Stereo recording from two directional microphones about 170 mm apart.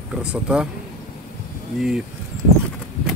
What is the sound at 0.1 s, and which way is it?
Speech, 5° right (ahead or behind).